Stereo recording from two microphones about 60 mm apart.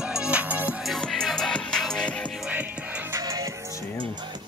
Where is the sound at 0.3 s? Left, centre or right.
Right.